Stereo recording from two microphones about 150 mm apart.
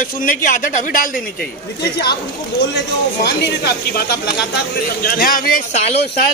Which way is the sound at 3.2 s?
90° left.